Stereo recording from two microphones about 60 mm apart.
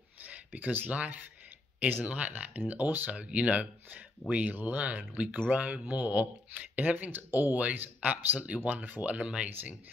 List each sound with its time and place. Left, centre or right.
0.2 s speech: right
3.1 s speech: right